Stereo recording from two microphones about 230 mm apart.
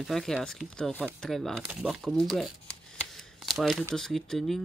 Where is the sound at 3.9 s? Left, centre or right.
Centre.